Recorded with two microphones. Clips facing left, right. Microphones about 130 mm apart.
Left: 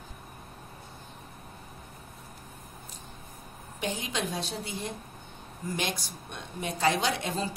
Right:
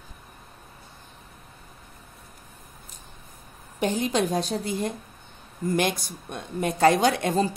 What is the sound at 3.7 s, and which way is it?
A woman's voice, 45° right (ahead or behind).